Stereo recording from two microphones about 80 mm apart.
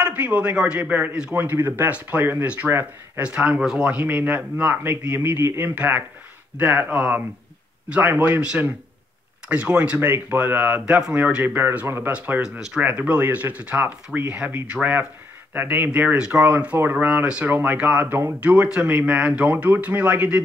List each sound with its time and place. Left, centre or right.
0.0 s speech: centre
9.5 s speech: centre
9.9 s speech: right; by 19.5 s centre
19.5 s speech: right